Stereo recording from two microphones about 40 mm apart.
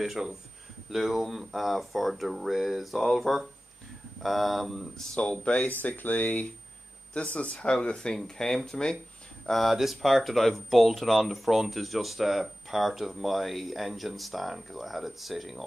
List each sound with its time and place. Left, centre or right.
0.0 s speech: centre
5.2 s speech: left
5.8 s speech: left
7.2 s speech: left; by 8.5 s centre
9.5 s speech: centre